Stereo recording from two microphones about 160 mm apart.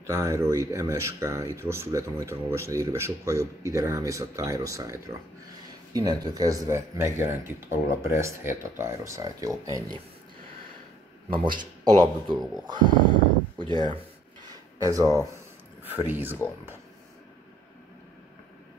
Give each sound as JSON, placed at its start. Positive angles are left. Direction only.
{"t": 0.0, "sound": "speech", "side_deg": -20}
{"t": 11.2, "sound": "speech", "side_deg": -30}
{"t": 13.6, "sound": "a sound", "side_deg": -30}
{"t": 16.1, "sound": "speech", "side_deg": -10}